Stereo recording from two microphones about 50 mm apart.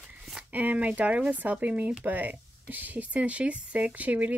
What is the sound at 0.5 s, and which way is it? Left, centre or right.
Speech, right.